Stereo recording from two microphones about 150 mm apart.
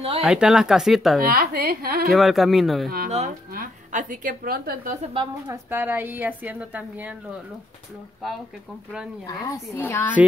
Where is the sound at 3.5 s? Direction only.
65° right (ahead or behind).